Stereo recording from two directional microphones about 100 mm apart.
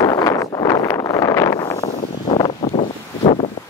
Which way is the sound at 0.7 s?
30° left (ahead or behind).